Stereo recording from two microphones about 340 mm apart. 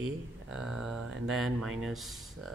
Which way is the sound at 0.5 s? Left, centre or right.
Centre.